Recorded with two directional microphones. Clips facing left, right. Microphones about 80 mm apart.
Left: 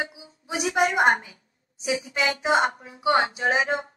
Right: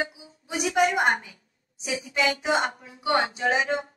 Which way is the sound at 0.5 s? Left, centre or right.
Left.